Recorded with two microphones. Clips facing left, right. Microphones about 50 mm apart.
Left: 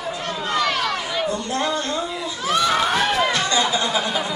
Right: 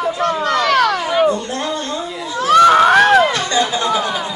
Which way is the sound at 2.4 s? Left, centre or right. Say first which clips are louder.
Right 11 dB; right.